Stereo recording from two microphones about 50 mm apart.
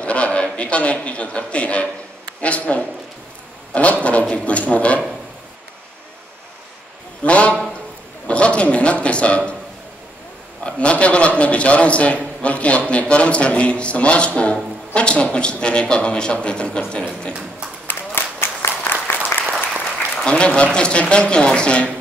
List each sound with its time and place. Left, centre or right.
0.0 s a man's voice: left
7.2 s a man's voice: left
10.6 s a man's voice: left
17.8 s a sound: left
18.7 s applause: left
20.2 s a man's voice: left